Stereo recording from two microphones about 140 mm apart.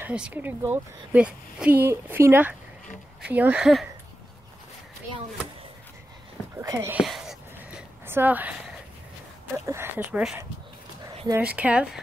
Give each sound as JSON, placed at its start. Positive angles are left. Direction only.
{"t": 0.0, "sound": "speech", "side_deg": -10}
{"t": 6.6, "sound": "speech", "side_deg": -25}
{"t": 7.0, "sound": "a sound", "side_deg": 0}
{"t": 8.1, "sound": "speech", "side_deg": -15}
{"t": 9.7, "sound": "speech", "side_deg": -15}
{"t": 11.4, "sound": "speech", "side_deg": -10}